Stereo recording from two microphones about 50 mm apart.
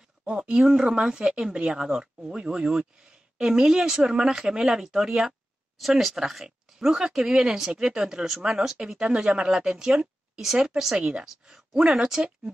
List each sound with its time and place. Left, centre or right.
0.2 s speech: centre